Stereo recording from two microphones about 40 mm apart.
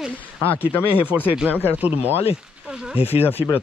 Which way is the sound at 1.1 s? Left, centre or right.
Right.